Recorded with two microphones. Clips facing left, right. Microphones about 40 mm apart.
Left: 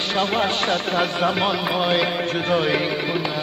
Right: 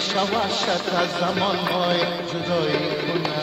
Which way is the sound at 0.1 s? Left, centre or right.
Left.